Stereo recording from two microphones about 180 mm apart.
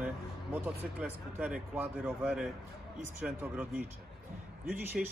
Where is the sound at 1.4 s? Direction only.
5° right (ahead or behind).